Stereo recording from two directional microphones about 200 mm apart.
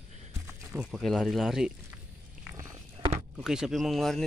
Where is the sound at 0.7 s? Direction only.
Centre (ahead or behind).